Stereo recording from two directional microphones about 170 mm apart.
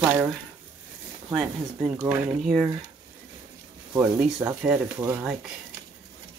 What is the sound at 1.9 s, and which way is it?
Speech, 10° right (ahead or behind).